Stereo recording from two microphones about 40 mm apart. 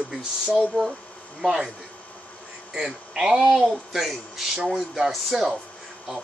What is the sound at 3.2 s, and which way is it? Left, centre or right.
Speech, right.